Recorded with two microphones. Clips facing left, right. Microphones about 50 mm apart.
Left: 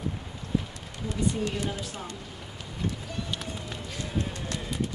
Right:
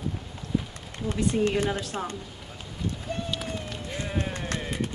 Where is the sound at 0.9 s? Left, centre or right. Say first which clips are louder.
Right 3 dB; right.